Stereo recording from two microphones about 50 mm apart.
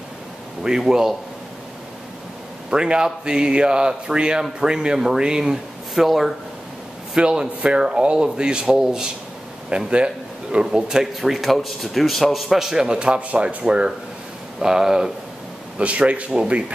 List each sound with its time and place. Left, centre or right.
0.7 s speech: centre
2.7 s speech: centre
6.0 s a man's voice: centre
7.2 s speech: centre
9.7 s a man's voice: right
11.1 s a man's voice: centre
15.8 s speech: right